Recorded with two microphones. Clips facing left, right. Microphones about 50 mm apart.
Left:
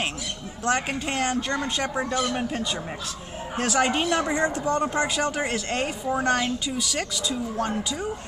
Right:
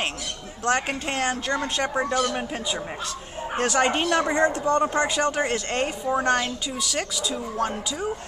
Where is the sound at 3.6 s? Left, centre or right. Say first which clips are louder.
Right 1 dB; centre.